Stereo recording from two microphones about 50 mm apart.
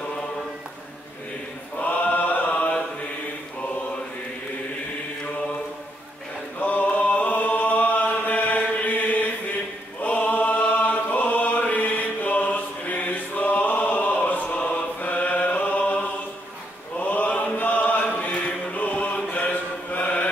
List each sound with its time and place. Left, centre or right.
1.8 s mantra: left
6.6 s a sound: left
10.0 s choir: left
16.9 s mantra: left
17.6 s chant: left